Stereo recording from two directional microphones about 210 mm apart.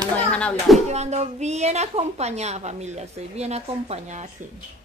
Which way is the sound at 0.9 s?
30° right (ahead or behind).